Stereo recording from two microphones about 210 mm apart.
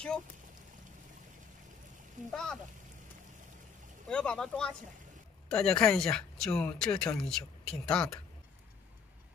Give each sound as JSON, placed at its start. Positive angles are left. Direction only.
{"t": 2.3, "sound": "speech", "side_deg": 0}
{"t": 4.1, "sound": "speech", "side_deg": 5}